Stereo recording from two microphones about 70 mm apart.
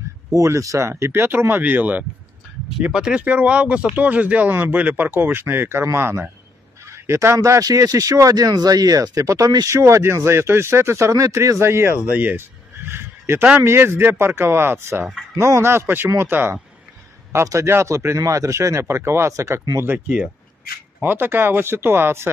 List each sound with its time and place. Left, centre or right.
0.3 s speech: right
2.9 s speech: centre
5.1 s speech: right
6.8 s fowl: right
7.3 s speech: right
12.1 s speech: right
12.8 s a sound: right
13.6 s speech: right
17.3 s speech: right
21.0 s speech: right